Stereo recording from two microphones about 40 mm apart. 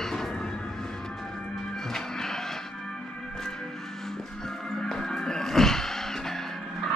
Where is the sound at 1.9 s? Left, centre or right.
Centre.